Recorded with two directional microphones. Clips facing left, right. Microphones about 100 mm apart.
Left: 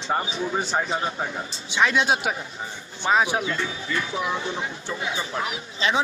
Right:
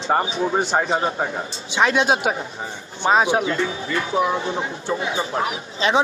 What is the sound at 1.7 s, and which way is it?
Speech, 20° right (ahead or behind).